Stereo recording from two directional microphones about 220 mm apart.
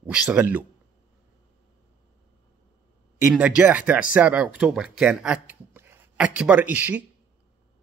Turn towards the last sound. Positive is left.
turn(degrees=-5)  # may be behind; listen again after turning